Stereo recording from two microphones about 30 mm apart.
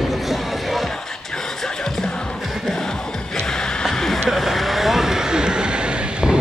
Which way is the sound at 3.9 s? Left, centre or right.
Centre.